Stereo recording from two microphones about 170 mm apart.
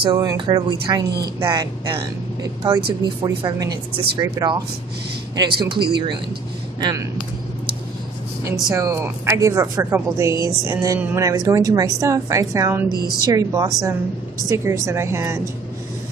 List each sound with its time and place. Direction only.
0.0 s a woman's voice: 20° right (ahead or behind)
3.0 s a woman's voice: 25° right (ahead or behind)
8.5 s a woman's voice: 20° right (ahead or behind)